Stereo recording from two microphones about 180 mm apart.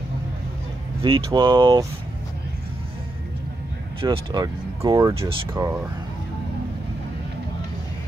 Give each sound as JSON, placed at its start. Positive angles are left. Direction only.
{"t": 1.0, "sound": "speech", "side_deg": -25}
{"t": 4.0, "sound": "speech", "side_deg": -25}
{"t": 5.1, "sound": "speech", "side_deg": -30}